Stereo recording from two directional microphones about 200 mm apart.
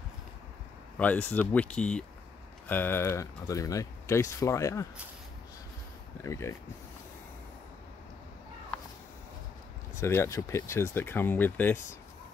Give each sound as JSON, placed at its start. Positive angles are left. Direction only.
{"t": 0.9, "sound": "speech", "side_deg": 10}
{"t": 6.2, "sound": "speech", "side_deg": 15}
{"t": 9.9, "sound": "speech", "side_deg": 15}